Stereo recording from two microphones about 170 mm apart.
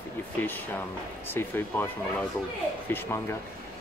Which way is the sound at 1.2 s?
15° left (ahead or behind).